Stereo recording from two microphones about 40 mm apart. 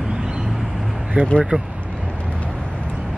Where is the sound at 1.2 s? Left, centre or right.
Right.